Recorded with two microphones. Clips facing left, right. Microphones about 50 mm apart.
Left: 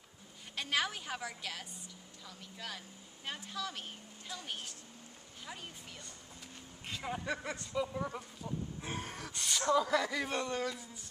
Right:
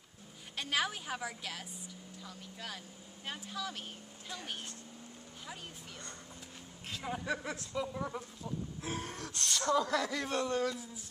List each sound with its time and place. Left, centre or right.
0.6 s speech: centre
6.9 s speech: centre